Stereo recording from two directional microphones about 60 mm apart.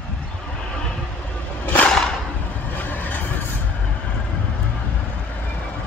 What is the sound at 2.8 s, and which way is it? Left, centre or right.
Vehicle, left.